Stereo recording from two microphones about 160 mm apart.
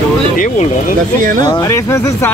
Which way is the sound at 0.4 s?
55° left (ahead or behind).